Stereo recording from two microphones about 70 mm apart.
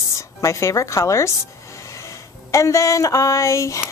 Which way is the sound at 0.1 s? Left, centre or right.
Left.